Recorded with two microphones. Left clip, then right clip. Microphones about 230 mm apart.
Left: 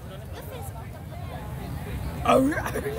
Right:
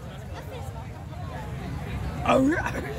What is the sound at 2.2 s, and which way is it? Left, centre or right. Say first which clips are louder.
Speech: left 1 dB; left.